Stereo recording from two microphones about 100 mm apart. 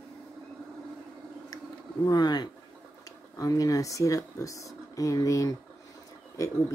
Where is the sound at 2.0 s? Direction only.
45° left (ahead or behind).